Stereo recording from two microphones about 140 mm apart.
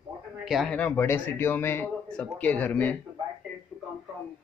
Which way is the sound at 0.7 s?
10° left (ahead or behind).